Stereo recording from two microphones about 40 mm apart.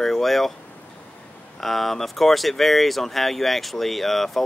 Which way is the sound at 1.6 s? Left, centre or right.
Centre.